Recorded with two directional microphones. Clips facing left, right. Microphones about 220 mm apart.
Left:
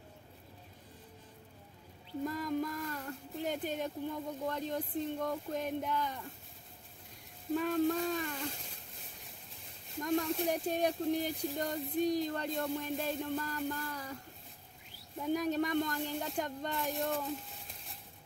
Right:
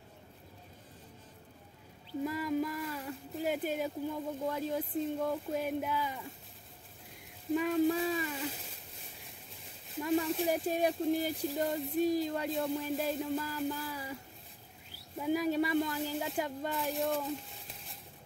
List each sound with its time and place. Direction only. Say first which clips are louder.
2.2 s a sound: right 2 dB; 5° right (ahead or behind)
4.5 s speech: right 2 dB; 5° right (ahead or behind)
7.5 s speech: right 2 dB; 5° right (ahead or behind)
9.8 s speech: right 2 dB; 5° right (ahead or behind)
15.1 s speech: right 2 dB; 5° right (ahead or behind)